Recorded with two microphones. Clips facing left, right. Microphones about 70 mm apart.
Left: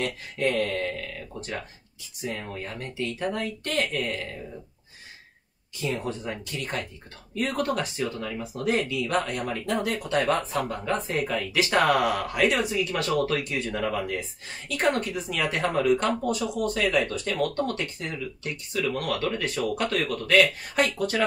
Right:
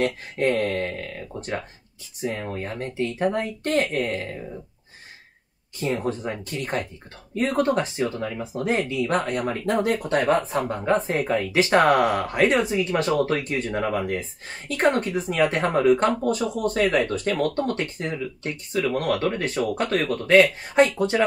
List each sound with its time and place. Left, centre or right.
0.0 s speech: right
5.8 s speech: right